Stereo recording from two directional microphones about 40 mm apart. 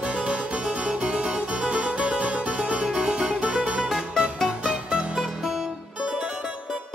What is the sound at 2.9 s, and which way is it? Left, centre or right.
Music, right.